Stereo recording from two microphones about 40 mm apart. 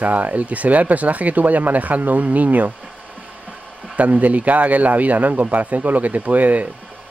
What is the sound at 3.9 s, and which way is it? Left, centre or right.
Speech, right.